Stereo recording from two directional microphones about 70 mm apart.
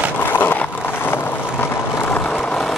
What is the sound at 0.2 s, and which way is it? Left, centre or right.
Vehicle, left.